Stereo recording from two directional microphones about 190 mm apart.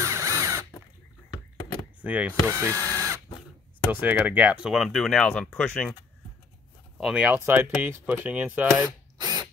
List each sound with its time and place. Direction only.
0.0 s a sound: 15° right (ahead or behind)
2.0 s speech: 10° right (ahead or behind)
2.8 s a sound: 15° right (ahead or behind)
3.9 s speech: 10° right (ahead or behind); by 5.9 s 5° left (ahead or behind)
7.0 s speech: 5° right (ahead or behind)
8.8 s tools: 20° right (ahead or behind)